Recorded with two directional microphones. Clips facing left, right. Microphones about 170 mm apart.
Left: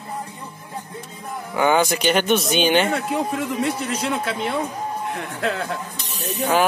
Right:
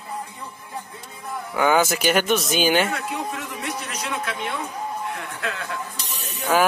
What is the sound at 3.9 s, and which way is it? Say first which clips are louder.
Speech: left 5 dB; 30° left (ahead or behind).